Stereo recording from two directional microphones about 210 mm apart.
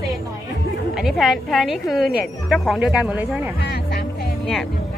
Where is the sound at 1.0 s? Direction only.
Centre (ahead or behind).